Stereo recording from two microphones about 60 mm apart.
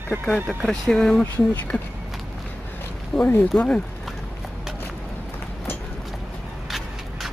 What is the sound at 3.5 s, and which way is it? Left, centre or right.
Speech, centre.